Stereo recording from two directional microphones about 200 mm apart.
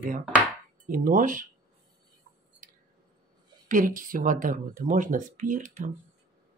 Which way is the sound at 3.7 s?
45° right (ahead or behind).